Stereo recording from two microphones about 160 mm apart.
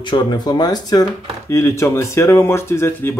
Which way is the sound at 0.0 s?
25° left (ahead or behind).